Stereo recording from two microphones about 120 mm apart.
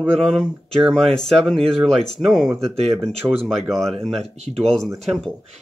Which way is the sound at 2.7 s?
55° right (ahead or behind).